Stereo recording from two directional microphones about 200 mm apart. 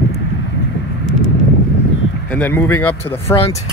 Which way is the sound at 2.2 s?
10° left (ahead or behind).